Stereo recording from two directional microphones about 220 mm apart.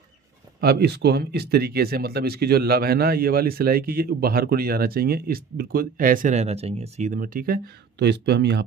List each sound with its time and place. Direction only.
0.6 s speech: 45° right (ahead or behind)